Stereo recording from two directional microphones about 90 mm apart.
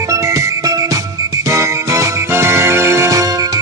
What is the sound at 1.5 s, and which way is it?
Music, 35° right (ahead or behind).